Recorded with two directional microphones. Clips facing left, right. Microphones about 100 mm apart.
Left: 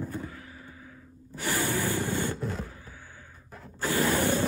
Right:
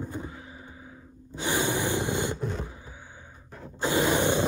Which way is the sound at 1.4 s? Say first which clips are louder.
Right 2 dB; 20° right (ahead or behind).